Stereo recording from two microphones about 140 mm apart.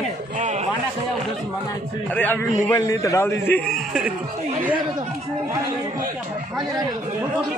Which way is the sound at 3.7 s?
5° right (ahead or behind).